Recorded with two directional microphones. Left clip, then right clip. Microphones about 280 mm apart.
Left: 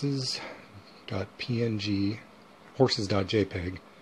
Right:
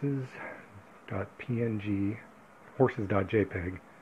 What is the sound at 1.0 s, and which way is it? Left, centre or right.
Speech, centre.